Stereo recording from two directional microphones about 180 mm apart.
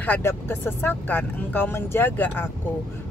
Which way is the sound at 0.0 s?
10° left (ahead or behind).